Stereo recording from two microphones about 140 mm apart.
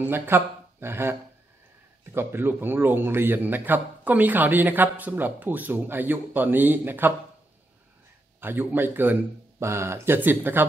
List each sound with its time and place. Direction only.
0.0 s speech: 15° right (ahead or behind)
2.1 s a man's voice: 15° right (ahead or behind)
8.4 s a man's voice: 15° right (ahead or behind)